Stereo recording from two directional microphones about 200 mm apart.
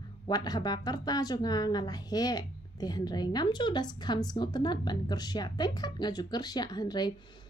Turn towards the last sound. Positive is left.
turn(degrees=20)  # may be behind; listen again after turning